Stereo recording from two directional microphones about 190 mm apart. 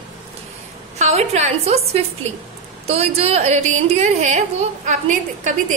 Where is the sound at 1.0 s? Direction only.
35° right (ahead or behind).